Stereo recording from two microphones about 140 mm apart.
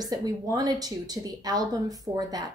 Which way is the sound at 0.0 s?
25° right (ahead or behind).